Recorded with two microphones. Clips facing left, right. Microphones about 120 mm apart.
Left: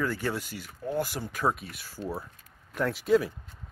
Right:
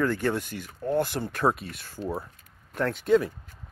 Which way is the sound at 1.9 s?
20° right (ahead or behind).